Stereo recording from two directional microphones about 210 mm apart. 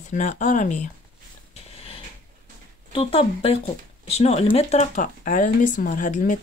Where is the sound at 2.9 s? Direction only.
30° left (ahead or behind).